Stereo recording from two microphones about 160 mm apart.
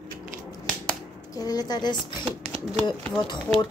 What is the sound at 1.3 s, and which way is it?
Speech, 25° left (ahead or behind).